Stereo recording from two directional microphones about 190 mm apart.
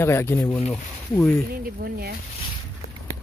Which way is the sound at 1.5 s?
50° right (ahead or behind).